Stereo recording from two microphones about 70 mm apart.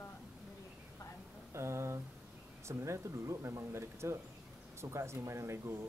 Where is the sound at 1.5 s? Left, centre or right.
Right.